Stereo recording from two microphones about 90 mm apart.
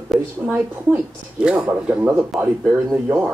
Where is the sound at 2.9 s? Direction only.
30° right (ahead or behind).